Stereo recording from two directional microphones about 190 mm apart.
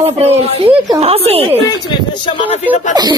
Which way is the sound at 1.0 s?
30° right (ahead or behind).